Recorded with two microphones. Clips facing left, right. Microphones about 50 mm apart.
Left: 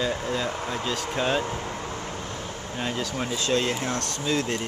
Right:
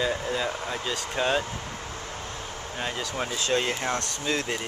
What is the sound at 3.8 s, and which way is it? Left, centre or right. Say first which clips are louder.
Speech: left 1 dB; right.